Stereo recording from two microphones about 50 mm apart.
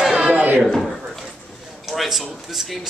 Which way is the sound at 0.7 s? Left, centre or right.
Centre.